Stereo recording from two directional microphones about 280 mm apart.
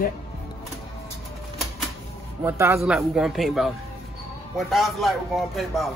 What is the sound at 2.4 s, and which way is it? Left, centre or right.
A man's voice, centre.